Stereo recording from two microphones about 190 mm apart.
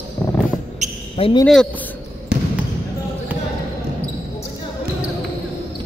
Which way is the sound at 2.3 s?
60° right (ahead or behind).